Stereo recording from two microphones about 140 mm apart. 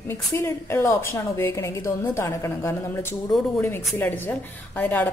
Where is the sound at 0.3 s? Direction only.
20° left (ahead or behind).